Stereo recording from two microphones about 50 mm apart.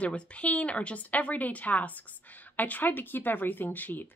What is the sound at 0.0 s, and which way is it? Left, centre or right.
A woman's voice, left.